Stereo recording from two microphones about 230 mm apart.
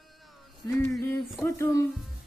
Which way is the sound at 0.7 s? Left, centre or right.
Centre.